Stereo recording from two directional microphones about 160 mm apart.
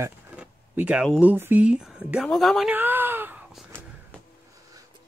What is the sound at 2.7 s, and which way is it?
Speech, 10° right (ahead or behind).